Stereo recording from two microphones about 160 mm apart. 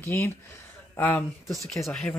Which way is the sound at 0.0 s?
15° left (ahead or behind).